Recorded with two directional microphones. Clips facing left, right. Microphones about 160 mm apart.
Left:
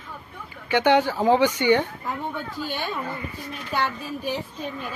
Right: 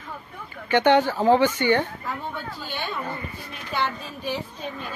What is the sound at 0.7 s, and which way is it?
Speech, 10° left (ahead or behind).